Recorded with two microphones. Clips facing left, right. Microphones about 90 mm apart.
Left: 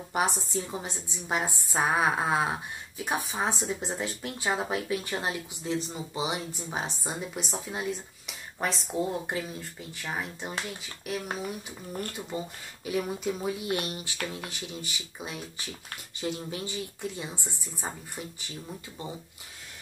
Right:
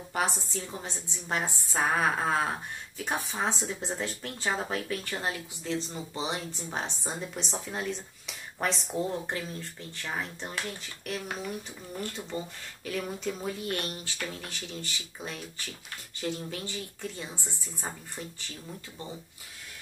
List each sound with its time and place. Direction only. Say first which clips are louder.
0.1 s a woman's voice: left 3 dB; 20° left (ahead or behind); by 12.3 s 5° left (ahead or behind)
12.8 s a woman's voice: left 3 dB; 15° left (ahead or behind)